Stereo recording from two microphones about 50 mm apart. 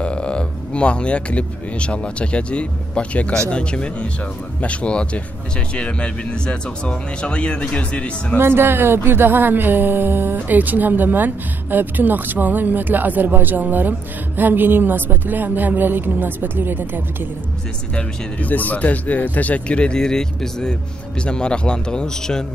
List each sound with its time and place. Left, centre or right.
0.0 s speech: left
8.4 s a woman's voice: right
18.4 s a man's voice: left; by 22.4 s centre